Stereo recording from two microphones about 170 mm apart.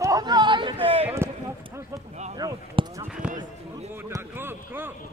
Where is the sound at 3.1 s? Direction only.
5° right (ahead or behind).